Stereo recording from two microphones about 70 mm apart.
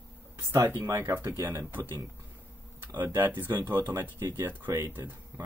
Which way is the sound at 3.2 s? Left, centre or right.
Right.